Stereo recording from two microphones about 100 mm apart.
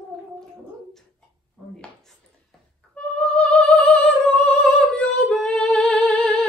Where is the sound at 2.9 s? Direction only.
10° left (ahead or behind).